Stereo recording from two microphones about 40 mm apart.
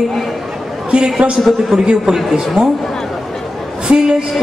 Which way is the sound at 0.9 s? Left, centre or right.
Right.